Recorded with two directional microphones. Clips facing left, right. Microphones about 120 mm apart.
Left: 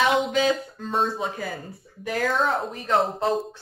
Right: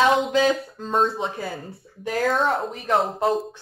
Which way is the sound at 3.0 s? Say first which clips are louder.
Right 1 dB; centre (ahead or behind).